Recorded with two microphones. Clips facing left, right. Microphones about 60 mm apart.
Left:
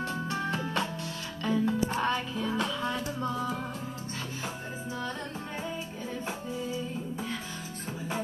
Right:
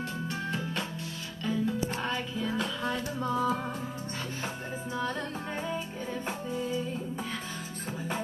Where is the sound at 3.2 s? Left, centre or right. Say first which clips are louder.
Right 3 dB; centre.